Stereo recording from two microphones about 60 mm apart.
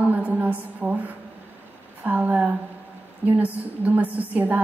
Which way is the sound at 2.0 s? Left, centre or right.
Right.